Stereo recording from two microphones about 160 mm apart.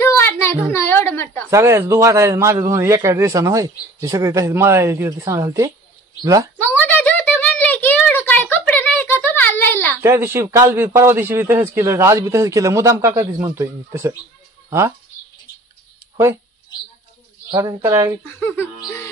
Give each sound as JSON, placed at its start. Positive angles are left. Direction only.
{"t": 0.0, "sound": "child singing", "side_deg": 15}
{"t": 0.7, "sound": "a sound", "side_deg": 15}
{"t": 1.5, "sound": "a man's voice", "side_deg": -15}
{"t": 6.6, "sound": "a sound", "side_deg": 10}
{"t": 10.0, "sound": "a man's voice", "side_deg": -15}
{"t": 17.5, "sound": "a man's voice", "side_deg": -25}
{"t": 18.8, "sound": "music", "side_deg": 15}